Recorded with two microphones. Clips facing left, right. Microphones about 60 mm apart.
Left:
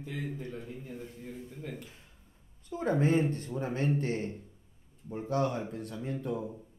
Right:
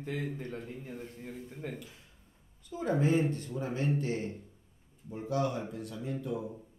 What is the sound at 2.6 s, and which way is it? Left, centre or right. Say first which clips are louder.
A man's voice: left 1 dB; left.